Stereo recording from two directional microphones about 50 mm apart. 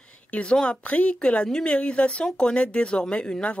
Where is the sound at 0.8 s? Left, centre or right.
Left.